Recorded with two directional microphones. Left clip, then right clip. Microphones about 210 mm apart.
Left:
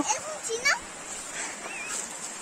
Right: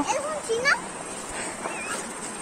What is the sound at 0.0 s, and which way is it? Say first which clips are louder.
Children playing: right 4 dB; 50° left (ahead or behind).